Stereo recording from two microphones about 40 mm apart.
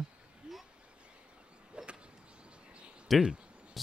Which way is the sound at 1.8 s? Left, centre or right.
Right.